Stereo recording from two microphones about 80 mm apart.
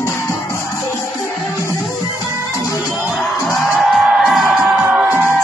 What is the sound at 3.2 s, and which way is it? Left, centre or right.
Music, centre.